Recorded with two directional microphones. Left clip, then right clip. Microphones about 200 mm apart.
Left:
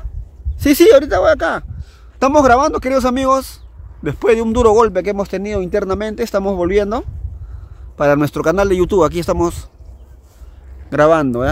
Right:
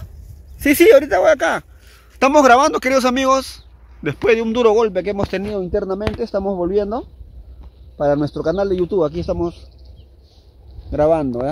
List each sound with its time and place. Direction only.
0.6 s speech: 5° left (ahead or behind)
5.7 s speech: 20° left (ahead or behind)
8.0 s speech: 30° left (ahead or behind)
9.1 s speech: 20° left (ahead or behind)
10.9 s speech: 15° left (ahead or behind)